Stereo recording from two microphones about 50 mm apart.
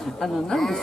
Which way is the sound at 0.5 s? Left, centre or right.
Centre.